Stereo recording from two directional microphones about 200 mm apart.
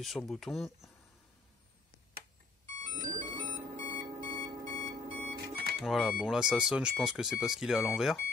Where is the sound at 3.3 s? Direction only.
20° right (ahead or behind).